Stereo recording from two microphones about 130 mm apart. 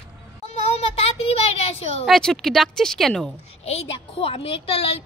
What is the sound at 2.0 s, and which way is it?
Speech, centre (ahead or behind).